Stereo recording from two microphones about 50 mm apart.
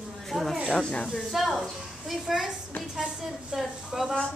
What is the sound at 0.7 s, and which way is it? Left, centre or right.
Speech, left.